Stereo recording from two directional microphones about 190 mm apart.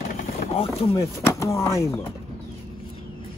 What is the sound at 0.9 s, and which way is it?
Speech, 15° left (ahead or behind).